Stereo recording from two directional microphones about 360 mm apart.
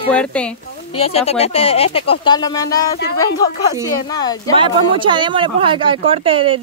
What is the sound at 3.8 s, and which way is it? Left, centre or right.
Speech, centre.